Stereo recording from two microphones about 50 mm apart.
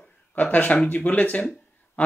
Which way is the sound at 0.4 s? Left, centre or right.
Left.